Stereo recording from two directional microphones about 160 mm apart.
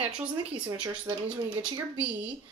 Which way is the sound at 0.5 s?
30° right (ahead or behind).